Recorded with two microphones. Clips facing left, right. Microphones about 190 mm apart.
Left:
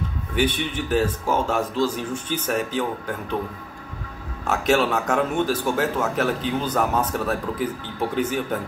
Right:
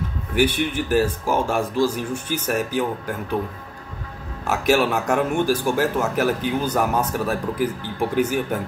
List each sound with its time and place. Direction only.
0.4 s speech: 10° right (ahead or behind)
4.5 s speech: 10° right (ahead or behind)